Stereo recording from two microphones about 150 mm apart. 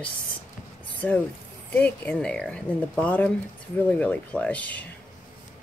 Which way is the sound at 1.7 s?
10° left (ahead or behind).